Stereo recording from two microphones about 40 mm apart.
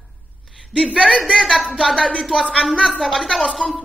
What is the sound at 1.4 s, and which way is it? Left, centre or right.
A woman's voice, centre.